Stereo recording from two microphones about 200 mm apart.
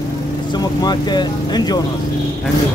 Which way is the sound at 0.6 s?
20° left (ahead or behind).